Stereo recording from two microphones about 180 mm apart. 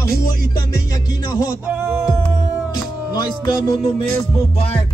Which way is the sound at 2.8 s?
20° left (ahead or behind).